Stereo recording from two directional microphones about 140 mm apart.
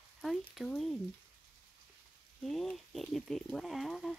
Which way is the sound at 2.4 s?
Centre (ahead or behind).